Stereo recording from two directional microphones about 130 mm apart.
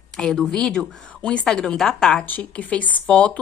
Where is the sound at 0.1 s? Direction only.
5° left (ahead or behind).